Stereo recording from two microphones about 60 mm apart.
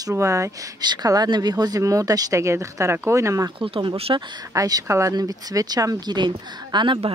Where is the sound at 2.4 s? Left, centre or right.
Right.